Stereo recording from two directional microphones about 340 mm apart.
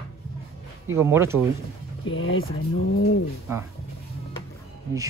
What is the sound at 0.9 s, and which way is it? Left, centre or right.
Speech, centre.